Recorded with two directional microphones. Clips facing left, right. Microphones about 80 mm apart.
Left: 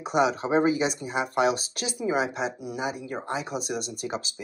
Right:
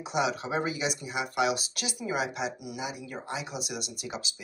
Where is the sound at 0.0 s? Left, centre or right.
Left.